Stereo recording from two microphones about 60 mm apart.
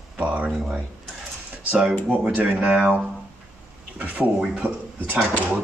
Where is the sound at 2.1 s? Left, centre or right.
Right.